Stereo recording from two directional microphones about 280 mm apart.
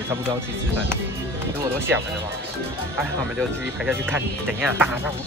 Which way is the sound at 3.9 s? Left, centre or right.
Centre.